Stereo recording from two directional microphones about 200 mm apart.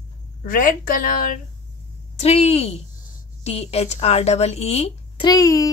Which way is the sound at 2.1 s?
30° left (ahead or behind).